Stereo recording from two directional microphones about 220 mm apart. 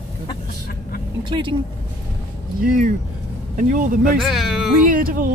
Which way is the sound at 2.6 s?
40° right (ahead or behind).